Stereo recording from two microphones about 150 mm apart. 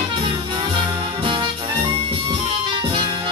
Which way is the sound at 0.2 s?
35° right (ahead or behind).